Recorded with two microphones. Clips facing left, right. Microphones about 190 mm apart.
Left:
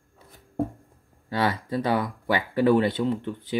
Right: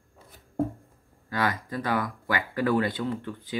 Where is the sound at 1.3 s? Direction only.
25° left (ahead or behind).